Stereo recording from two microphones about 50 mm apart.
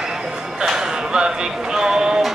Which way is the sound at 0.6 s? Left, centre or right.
Centre.